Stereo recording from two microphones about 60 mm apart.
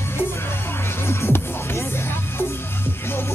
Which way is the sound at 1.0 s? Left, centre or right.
Left.